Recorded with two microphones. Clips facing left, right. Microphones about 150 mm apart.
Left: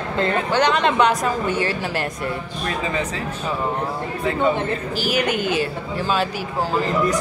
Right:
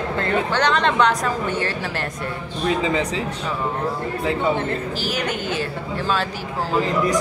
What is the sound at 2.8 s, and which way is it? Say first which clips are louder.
Speech: right 3 dB; 15° right (ahead or behind).